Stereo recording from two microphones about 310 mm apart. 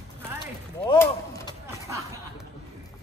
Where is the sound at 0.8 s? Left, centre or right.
Centre.